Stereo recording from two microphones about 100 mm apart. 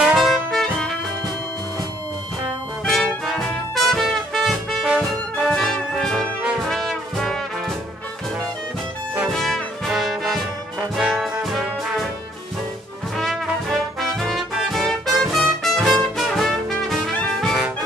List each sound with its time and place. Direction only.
0.0 s music: centre (ahead or behind)
2.8 s brass instrument: 5° left (ahead or behind)
5.5 s music: 5° left (ahead or behind)
6.7 s brass instrument: 5° left (ahead or behind)
9.3 s music: centre (ahead or behind)
11.0 s brass instrument: 5° right (ahead or behind)
13.2 s brass instrument: centre (ahead or behind)
14.2 s music: 5° right (ahead or behind)
17.0 s brass instrument: 5° left (ahead or behind)